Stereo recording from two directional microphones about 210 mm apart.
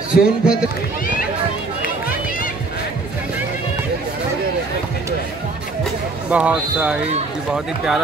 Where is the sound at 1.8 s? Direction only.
40° left (ahead or behind).